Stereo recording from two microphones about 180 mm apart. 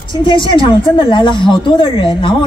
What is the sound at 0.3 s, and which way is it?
A woman's voice, 30° left (ahead or behind).